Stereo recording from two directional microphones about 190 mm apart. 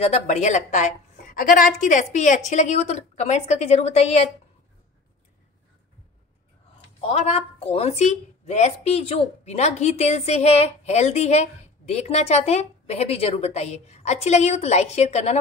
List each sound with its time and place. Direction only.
0.0 s a woman's voice: 35° left (ahead or behind)
7.0 s a woman's voice: 35° left (ahead or behind)